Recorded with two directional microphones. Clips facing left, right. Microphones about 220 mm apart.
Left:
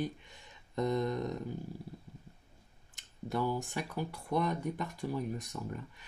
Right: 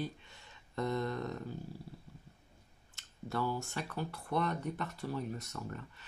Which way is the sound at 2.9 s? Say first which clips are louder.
Left 3 dB; 15° left (ahead or behind).